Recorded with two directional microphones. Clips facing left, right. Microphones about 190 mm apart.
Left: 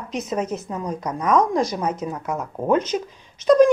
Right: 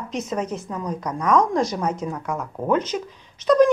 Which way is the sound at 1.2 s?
5° left (ahead or behind).